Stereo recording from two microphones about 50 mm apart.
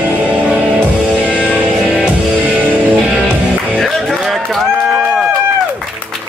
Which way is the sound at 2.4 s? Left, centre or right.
Right.